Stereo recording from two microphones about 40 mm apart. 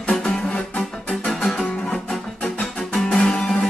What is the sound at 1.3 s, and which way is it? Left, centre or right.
Music, centre.